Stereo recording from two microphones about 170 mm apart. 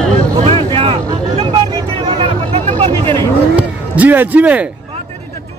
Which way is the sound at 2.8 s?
35° right (ahead or behind).